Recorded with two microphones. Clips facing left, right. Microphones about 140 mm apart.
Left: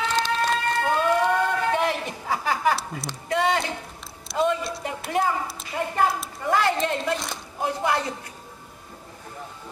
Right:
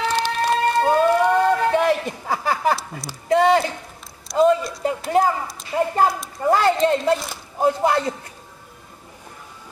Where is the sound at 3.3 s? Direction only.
40° right (ahead or behind).